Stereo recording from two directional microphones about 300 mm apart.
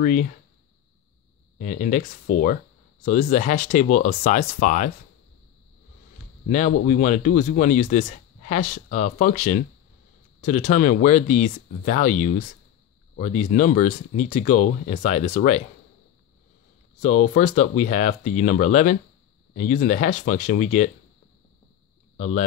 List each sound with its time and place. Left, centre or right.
0.0 s speech: left
1.6 s speech: left
2.3 s speech: left
3.1 s speech: left
6.5 s speech: left
17.4 s speech: left
22.1 s a sound: left